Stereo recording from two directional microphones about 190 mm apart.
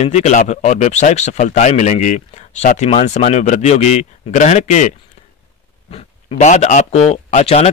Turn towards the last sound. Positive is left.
turn(degrees=35)  # may be behind; listen again after turning